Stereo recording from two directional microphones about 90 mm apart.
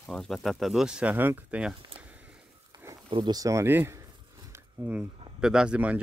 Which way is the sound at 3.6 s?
25° right (ahead or behind).